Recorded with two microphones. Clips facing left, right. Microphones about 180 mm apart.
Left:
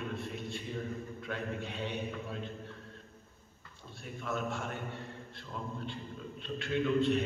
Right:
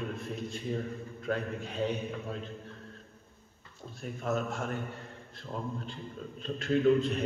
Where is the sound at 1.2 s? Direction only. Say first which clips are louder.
Right 6 dB; 35° right (ahead or behind).